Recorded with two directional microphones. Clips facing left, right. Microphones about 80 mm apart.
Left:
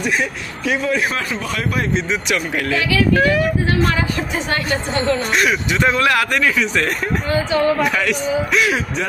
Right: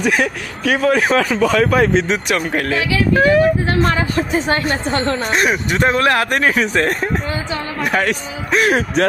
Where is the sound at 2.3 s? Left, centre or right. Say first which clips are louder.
Right 1 dB; right.